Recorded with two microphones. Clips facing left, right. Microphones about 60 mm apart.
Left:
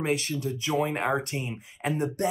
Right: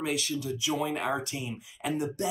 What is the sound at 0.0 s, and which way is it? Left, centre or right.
Speech, left.